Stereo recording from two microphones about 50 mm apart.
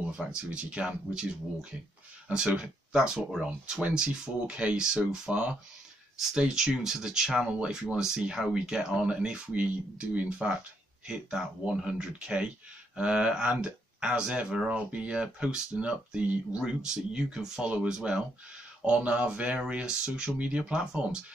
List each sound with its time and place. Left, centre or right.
0.3 s speech: right
9.5 s speech: right